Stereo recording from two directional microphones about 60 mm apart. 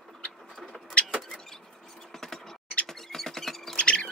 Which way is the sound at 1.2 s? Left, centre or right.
Centre.